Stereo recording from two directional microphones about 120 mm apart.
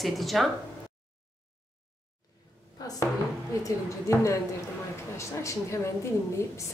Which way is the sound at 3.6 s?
25° left (ahead or behind).